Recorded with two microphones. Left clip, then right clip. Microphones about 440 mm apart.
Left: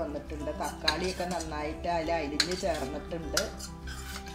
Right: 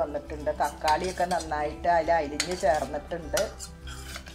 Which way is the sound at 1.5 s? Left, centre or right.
Right.